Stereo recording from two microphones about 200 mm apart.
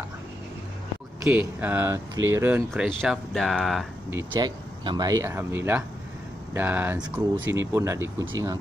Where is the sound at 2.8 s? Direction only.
Centre (ahead or behind).